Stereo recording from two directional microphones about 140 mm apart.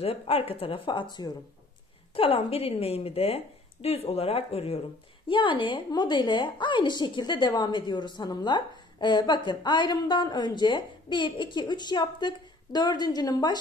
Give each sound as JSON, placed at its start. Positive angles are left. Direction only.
{"t": 0.0, "sound": "a woman's voice", "side_deg": 45}
{"t": 2.1, "sound": "a woman's voice", "side_deg": 40}